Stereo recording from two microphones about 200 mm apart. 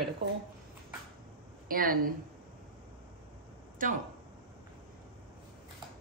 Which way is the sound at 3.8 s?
40° right (ahead or behind).